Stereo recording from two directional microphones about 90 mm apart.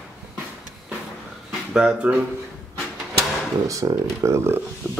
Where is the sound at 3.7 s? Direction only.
40° right (ahead or behind).